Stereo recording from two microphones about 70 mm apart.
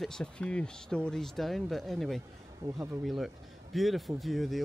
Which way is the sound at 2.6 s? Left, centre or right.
Right.